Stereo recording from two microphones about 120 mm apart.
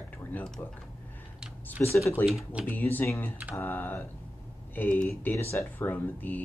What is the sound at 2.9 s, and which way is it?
Speech, 20° left (ahead or behind).